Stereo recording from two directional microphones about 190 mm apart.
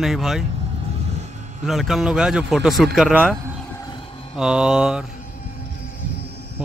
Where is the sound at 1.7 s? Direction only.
Centre (ahead or behind).